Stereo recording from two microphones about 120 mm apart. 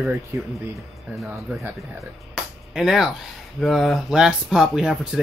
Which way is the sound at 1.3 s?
15° right (ahead or behind).